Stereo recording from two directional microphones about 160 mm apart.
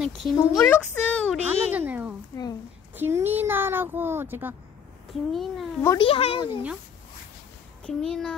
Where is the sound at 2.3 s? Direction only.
15° left (ahead or behind).